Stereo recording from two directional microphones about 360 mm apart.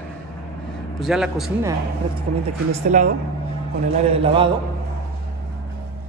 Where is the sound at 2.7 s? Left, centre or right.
Centre.